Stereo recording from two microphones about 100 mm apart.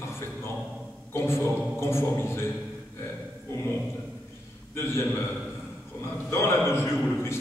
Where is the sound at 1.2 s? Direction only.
25° left (ahead or behind).